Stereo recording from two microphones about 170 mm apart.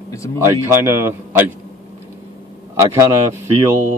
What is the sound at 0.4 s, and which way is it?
Speech, 15° right (ahead or behind).